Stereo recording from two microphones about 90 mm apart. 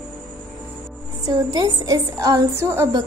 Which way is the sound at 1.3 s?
45° right (ahead or behind).